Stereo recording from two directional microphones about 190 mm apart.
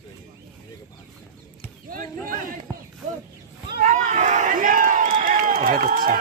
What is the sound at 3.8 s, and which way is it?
Crowd, 40° right (ahead or behind).